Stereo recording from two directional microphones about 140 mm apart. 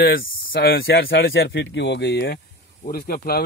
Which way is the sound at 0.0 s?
90° left.